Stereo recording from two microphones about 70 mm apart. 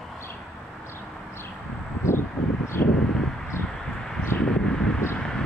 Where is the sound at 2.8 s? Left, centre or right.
Left.